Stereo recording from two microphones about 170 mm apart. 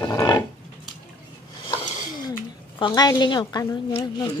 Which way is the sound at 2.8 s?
25° left (ahead or behind).